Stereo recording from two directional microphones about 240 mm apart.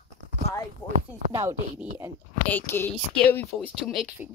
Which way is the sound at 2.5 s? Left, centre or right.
Centre.